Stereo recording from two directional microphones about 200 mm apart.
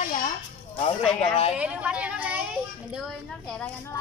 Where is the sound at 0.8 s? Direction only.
30° left (ahead or behind).